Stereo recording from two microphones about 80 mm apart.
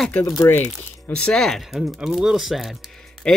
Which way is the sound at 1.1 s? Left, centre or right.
Centre.